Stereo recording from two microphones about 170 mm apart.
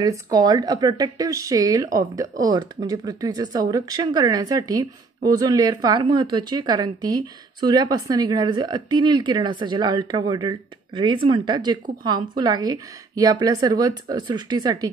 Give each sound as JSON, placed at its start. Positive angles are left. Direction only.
{"t": 0.0, "sound": "speech", "side_deg": -25}